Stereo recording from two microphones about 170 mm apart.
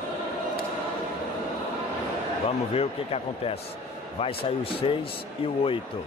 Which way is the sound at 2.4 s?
35° left (ahead or behind).